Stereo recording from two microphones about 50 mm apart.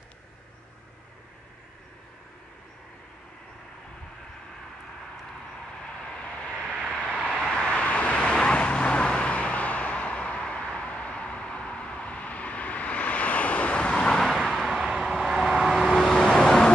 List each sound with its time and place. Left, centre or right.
5.9 s vehicle: centre
6.7 s vehicle: centre
7.5 s vehicle: left
14.7 s vehicle: centre
16.0 s vehicle: centre